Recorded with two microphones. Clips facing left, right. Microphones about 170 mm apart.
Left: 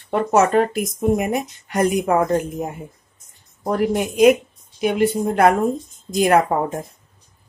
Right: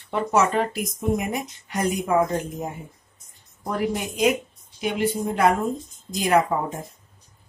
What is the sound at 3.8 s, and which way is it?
Speech, 50° left (ahead or behind).